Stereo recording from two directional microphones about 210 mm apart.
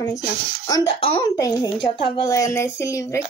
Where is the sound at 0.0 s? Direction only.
15° left (ahead or behind).